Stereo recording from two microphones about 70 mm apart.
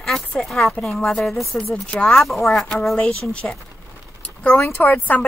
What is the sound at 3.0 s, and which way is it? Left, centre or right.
Speech, centre.